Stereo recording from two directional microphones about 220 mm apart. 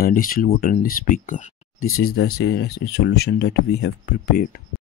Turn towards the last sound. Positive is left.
turn(degrees=45)  # may be behind; listen again after turning